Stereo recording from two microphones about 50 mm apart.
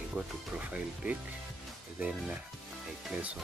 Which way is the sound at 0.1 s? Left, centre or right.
Right.